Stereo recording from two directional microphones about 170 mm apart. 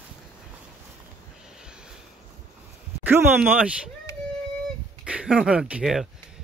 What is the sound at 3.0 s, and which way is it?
Speech, 10° right (ahead or behind).